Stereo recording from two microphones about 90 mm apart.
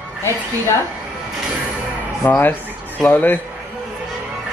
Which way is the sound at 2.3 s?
20° left (ahead or behind).